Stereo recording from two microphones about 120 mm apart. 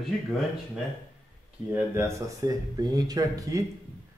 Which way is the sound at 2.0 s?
25° right (ahead or behind).